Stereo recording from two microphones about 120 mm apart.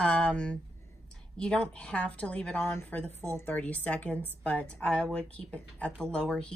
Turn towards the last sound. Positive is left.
turn(degrees=5)  # may be behind; listen again after turning